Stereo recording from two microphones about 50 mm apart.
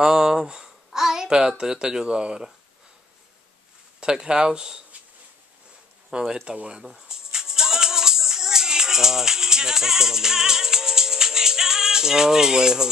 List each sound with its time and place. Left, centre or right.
0.0 s a sound: centre
1.6 s speech: centre
4.0 s speech: centre
6.4 s speech: centre
6.8 s music: centre